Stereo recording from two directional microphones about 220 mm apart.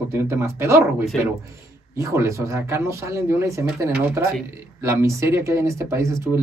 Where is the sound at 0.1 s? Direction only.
10° right (ahead or behind).